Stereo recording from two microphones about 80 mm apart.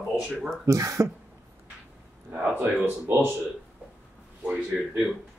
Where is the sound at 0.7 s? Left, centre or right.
Right.